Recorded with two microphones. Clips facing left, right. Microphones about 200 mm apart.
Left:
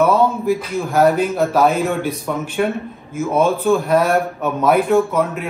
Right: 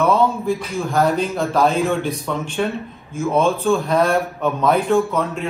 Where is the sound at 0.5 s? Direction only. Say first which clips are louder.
Left 3 dB; 5° left (ahead or behind).